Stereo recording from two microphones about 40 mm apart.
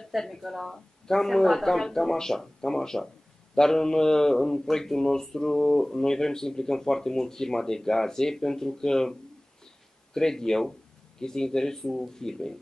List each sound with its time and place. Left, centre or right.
0.0 s speech: centre
10.1 s speech: centre